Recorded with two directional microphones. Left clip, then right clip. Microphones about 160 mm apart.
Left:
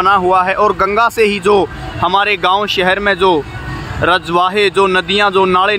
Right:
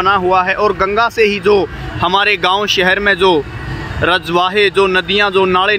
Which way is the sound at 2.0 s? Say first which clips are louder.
Even; centre (ahead or behind).